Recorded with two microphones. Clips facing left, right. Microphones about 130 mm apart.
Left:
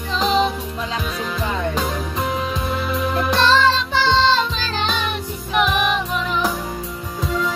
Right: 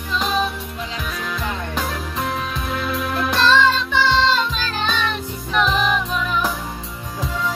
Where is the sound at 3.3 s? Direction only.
25° left (ahead or behind).